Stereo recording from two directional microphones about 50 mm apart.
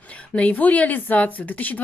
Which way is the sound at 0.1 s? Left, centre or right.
Left.